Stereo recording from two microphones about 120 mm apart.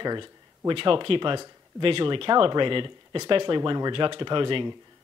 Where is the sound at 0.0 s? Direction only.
40° right (ahead or behind).